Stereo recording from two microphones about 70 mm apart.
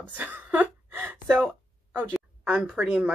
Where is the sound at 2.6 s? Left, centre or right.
Centre.